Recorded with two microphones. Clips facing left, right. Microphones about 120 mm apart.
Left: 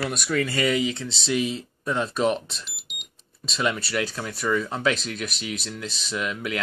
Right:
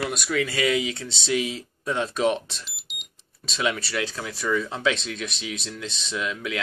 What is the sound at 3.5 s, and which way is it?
Speech, 5° left (ahead or behind).